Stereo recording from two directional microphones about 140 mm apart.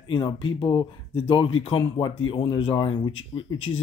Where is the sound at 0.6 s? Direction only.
15° left (ahead or behind).